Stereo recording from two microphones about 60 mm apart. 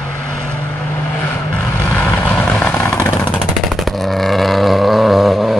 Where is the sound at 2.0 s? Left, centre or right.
Left.